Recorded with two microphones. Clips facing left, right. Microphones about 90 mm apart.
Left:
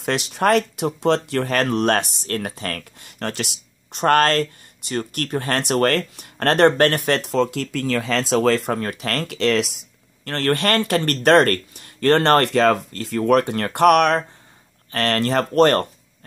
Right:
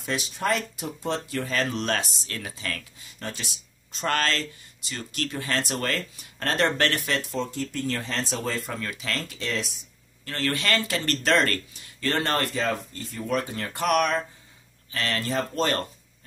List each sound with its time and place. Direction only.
0.0 s speech: 70° left (ahead or behind)
8.7 s speech: 50° left (ahead or behind); by 9.8 s 75° left (ahead or behind)
10.2 s speech: 55° left (ahead or behind)